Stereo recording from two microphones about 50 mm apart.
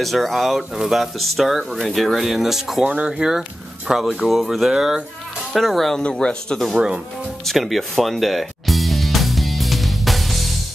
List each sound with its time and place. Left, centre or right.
0.0 s speech: centre
2.8 s speech: right
3.1 s speech: centre
6.5 s speech: centre
7.4 s music: centre